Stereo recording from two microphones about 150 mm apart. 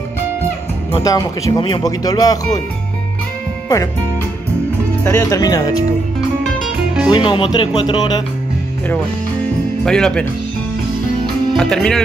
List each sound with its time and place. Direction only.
1.0 s speech: 25° left (ahead or behind)
3.6 s speech: 25° left (ahead or behind)
5.0 s speech: 20° left (ahead or behind)
7.1 s speech: 30° left (ahead or behind)
9.8 s speech: 5° left (ahead or behind)
11.5 s speech: 5° left (ahead or behind)